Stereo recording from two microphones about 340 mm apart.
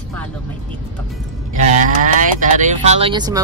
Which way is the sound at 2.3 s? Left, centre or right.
Right.